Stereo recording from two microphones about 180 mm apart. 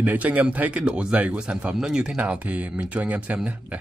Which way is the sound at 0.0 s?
10° right (ahead or behind).